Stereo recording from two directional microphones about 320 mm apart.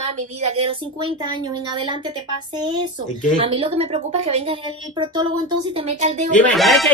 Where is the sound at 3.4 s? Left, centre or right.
Centre.